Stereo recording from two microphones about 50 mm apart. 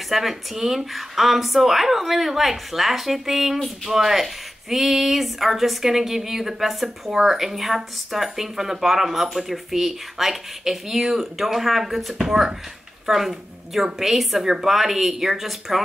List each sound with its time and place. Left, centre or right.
0.1 s speech: centre